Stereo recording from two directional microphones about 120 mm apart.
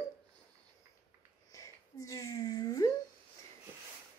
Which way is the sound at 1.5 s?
25° left (ahead or behind).